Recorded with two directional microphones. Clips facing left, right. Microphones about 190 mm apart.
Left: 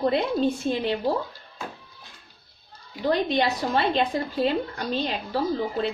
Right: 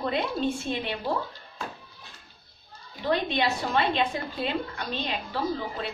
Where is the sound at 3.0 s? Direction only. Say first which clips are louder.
Left 3 dB; 35° left (ahead or behind).